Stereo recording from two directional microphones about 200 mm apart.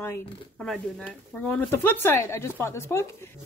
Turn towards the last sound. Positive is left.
turn(degrees=15)  # may be behind; listen again after turning